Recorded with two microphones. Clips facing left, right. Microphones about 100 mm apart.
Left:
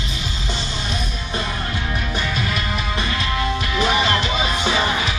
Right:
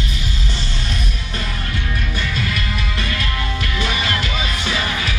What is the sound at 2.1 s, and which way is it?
Music, 20° left (ahead or behind).